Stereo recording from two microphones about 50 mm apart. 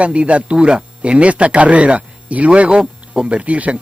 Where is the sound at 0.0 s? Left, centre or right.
Right.